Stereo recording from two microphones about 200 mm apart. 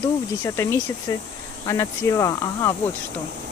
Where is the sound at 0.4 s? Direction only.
15° left (ahead or behind).